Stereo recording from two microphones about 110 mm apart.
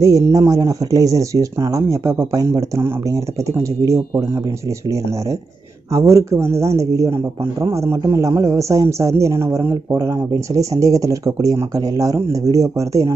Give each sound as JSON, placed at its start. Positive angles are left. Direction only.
{"t": 0.0, "sound": "a man's voice", "side_deg": -30}
{"t": 5.9, "sound": "a man's voice", "side_deg": -30}